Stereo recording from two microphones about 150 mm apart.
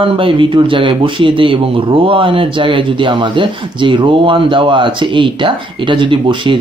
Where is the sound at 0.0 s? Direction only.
35° right (ahead or behind).